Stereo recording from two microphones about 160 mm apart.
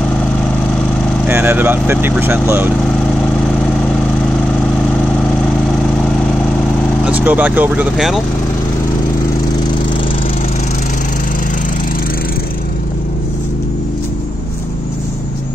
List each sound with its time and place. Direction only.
1.2 s speech: 15° right (ahead or behind)
7.1 s speech: 10° right (ahead or behind)